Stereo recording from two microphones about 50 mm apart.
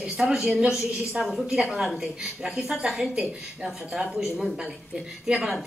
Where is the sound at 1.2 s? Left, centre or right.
Centre.